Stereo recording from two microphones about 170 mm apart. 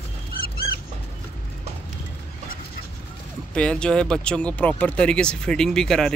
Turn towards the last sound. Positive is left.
turn(degrees=5)  # may be behind; listen again after turning